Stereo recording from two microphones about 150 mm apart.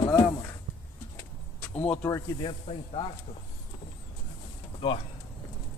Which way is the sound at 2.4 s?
35° left (ahead or behind).